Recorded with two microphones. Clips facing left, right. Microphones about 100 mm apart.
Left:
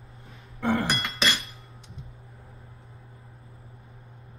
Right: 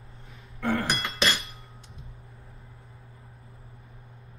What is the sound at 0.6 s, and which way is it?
Chink, 20° left (ahead or behind).